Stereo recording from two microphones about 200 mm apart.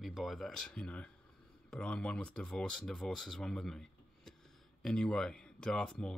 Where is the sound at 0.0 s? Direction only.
Centre (ahead or behind).